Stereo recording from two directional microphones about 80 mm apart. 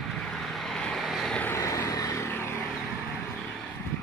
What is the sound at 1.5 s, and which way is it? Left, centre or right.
Vehicle, left.